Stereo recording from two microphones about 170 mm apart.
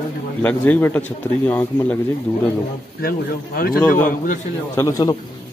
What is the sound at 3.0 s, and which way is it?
A man's voice, 60° left (ahead or behind).